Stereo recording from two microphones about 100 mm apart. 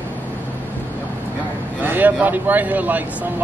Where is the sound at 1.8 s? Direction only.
20° right (ahead or behind).